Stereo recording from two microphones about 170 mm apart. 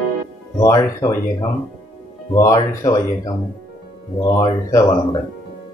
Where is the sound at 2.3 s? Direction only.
20° left (ahead or behind).